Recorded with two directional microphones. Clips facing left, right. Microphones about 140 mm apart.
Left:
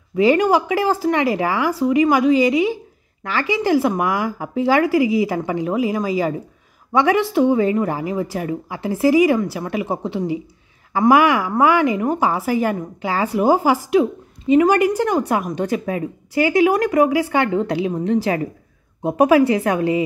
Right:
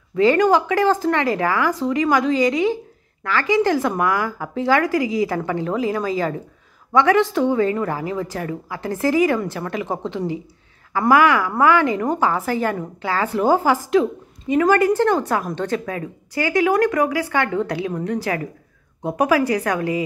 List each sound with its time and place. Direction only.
0.1 s speech: 15° left (ahead or behind)